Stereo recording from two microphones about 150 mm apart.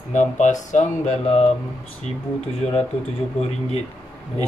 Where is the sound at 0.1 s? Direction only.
55° left (ahead or behind).